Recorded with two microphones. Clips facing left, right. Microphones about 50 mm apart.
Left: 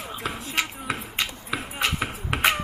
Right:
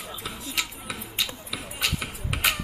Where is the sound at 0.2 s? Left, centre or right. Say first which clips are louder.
Left 5 dB; left.